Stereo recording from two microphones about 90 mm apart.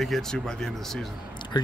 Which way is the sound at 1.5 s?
55° left (ahead or behind).